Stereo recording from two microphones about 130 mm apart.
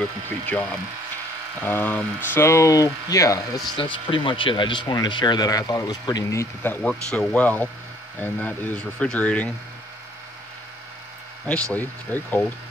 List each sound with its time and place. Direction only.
0.5 s speech: 10° left (ahead or behind)
3.7 s speech: 40° left (ahead or behind); by 9.5 s 10° left (ahead or behind)
11.7 s speech: 15° left (ahead or behind)